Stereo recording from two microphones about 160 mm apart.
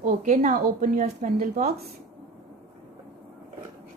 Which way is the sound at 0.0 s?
50° right (ahead or behind).